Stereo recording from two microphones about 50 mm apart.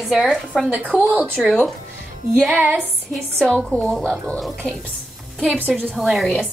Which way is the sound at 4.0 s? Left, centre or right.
Centre.